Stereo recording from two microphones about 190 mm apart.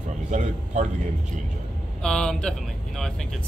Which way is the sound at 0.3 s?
40° right (ahead or behind).